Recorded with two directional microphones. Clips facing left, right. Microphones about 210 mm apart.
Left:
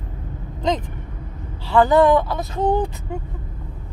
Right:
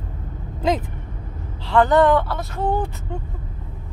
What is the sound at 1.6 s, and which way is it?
Speech, 5° left (ahead or behind).